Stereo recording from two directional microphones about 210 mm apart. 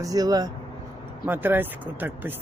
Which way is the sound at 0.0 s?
15° right (ahead or behind).